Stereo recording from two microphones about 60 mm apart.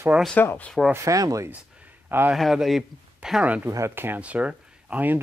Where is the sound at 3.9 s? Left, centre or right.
Right.